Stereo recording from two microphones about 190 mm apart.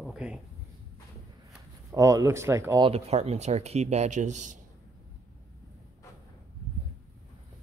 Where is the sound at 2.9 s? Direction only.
35° right (ahead or behind).